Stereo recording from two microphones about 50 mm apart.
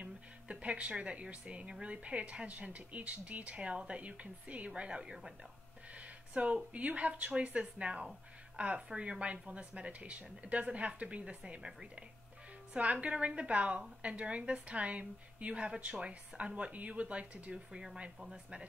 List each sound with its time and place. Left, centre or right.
0.0 s a woman's voice: right
5.9 s a woman's voice: right
17.6 s speech: centre
18.3 s a woman's voice: right